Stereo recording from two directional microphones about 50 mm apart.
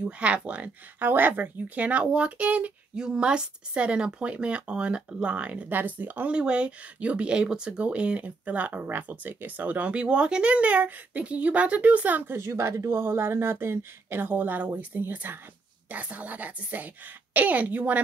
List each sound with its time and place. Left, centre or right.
0.2 s speech: right
0.9 s speech: right
3.0 s speech: centre
5.7 s a woman's voice: right
6.3 s speech: centre
12.4 s a woman's voice: right